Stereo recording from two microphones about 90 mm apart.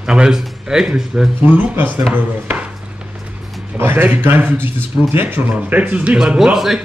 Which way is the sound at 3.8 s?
20° right (ahead or behind).